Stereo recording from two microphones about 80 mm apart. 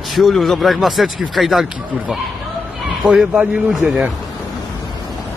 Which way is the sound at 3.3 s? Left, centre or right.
Right.